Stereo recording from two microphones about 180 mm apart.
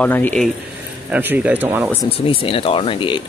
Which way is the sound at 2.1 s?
30° left (ahead or behind).